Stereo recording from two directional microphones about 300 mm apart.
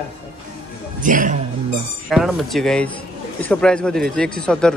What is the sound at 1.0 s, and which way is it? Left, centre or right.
Speech, right.